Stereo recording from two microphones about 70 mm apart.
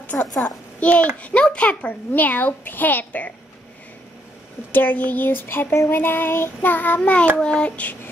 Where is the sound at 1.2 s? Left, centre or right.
Centre.